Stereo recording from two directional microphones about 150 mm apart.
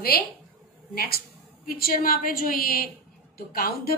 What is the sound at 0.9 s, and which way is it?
A woman's voice, 80° left.